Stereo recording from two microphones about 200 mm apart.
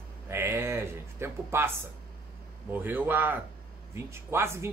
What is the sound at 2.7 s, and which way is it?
A man's voice, 10° right (ahead or behind).